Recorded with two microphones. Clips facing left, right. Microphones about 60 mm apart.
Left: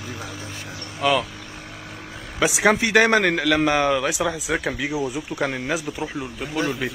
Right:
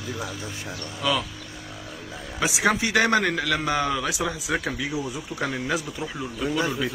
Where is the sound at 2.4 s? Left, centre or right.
Left.